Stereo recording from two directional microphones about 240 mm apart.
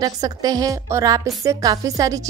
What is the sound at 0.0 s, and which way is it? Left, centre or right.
A woman's voice, centre.